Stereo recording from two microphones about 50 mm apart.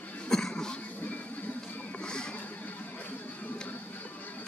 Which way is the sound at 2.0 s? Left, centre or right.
Centre.